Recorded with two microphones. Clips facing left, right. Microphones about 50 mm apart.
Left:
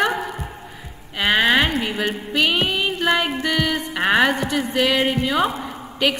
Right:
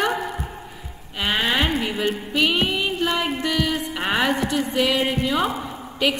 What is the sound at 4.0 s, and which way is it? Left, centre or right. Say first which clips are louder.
Speech: left 5 dB; centre.